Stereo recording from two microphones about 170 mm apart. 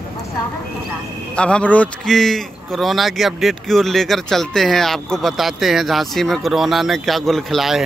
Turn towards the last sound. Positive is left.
turn(degrees=0)  # may be behind; listen again after turning